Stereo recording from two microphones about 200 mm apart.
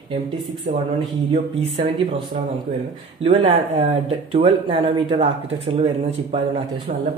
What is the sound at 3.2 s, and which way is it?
Speech, 30° right (ahead or behind).